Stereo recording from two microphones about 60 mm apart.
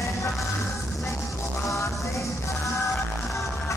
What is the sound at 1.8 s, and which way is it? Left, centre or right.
Music, left.